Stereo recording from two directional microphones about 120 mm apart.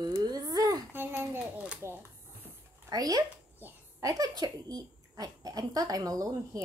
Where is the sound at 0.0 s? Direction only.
35° right (ahead or behind).